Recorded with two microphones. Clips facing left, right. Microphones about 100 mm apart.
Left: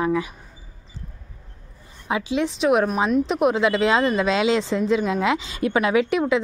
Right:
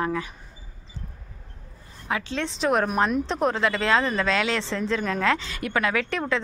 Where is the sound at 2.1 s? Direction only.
10° left (ahead or behind).